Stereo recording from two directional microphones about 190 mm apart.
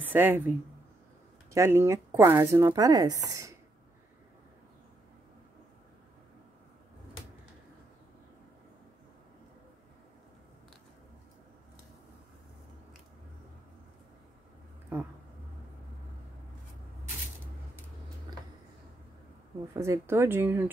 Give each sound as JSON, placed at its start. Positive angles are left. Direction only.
{"t": 0.0, "sound": "speech", "side_deg": -10}
{"t": 1.5, "sound": "speech", "side_deg": -15}
{"t": 14.9, "sound": "a sound", "side_deg": -15}
{"t": 19.7, "sound": "speech", "side_deg": -15}